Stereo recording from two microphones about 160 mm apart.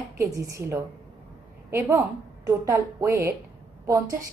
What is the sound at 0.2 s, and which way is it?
A woman's voice, 20° right (ahead or behind).